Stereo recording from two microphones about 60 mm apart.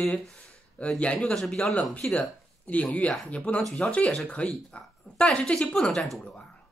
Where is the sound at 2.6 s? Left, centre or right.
Left; by 6.1 s centre.